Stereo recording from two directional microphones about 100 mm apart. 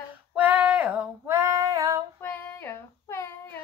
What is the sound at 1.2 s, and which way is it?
Female singing, 30° right (ahead or behind).